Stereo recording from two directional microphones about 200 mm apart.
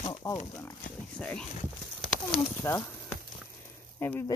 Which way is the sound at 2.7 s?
15° left (ahead or behind).